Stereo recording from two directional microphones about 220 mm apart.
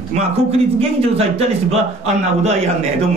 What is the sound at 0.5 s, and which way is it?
Speech, 25° right (ahead or behind).